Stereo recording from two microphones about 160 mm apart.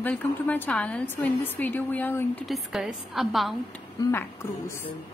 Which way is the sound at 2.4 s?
Centre (ahead or behind).